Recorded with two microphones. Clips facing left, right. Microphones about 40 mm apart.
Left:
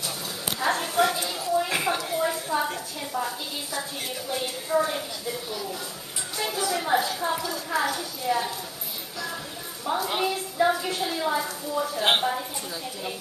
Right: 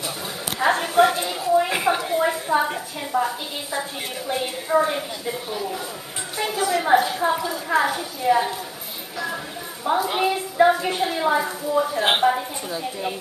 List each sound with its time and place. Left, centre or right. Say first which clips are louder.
0.6 s a sound: right 6 dB; right
1.9 s a woman's voice: right 5 dB; centre
9.9 s a woman's voice: right 4 dB; centre
10.2 s a woman's voice: right 7 dB; right
12.0 s a woman's voice: right 1 dB; centre
12.3 s a woman's voice: right 7 dB; right